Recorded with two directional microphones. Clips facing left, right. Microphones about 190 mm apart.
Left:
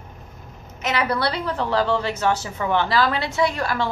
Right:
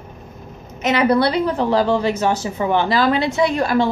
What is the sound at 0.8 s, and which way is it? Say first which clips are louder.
A woman's voice: right 7 dB; 20° right (ahead or behind).